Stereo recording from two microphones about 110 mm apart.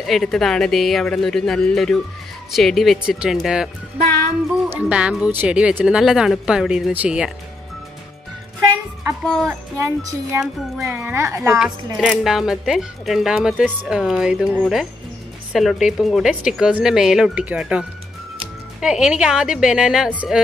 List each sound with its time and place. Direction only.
0.0 s speech: centre (ahead or behind)
4.7 s speech: 10° right (ahead or behind)
9.2 s speech: 5° left (ahead or behind)
9.8 s speech: 25° right (ahead or behind)
11.5 s speech: 5° right (ahead or behind)